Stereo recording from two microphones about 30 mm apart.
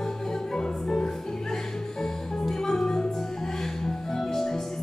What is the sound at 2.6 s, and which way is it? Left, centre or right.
Music, centre.